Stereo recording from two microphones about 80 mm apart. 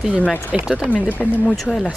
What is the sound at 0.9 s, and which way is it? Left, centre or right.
Speech, centre.